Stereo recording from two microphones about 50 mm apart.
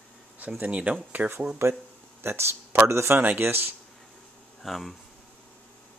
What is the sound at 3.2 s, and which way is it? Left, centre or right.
Speech, right.